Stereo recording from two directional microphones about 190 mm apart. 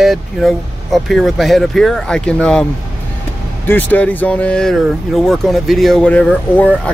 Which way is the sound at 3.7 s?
10° left (ahead or behind).